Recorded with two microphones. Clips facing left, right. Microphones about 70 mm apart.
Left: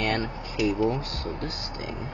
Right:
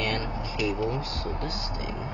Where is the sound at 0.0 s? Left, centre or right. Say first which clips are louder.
Left 3 dB; left.